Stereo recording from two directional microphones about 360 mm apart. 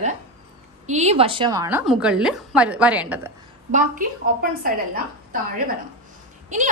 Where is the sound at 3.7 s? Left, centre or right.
Centre.